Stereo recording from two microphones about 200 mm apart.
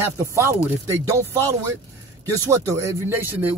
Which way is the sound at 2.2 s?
15° right (ahead or behind).